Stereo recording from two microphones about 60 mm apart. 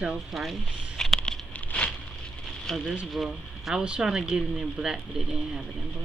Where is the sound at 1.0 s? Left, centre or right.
Centre.